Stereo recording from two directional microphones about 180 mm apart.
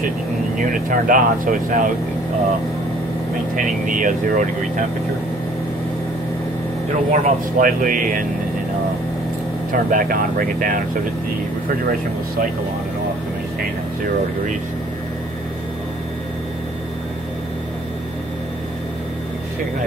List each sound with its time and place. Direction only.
0.6 s speech: 50° right (ahead or behind)
3.5 s speech: 45° right (ahead or behind)
6.9 s speech: 45° right (ahead or behind)
9.7 s speech: 50° right (ahead or behind)